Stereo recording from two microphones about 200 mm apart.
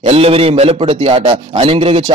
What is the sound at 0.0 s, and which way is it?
A man's voice, 30° right (ahead or behind).